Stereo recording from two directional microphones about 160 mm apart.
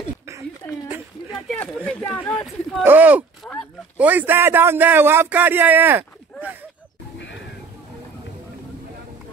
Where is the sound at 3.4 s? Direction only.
5° left (ahead or behind).